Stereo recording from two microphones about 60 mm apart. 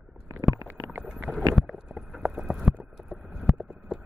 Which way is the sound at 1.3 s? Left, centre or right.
Right.